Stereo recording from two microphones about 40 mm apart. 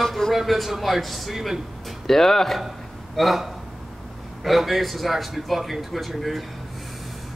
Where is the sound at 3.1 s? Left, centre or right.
Centre.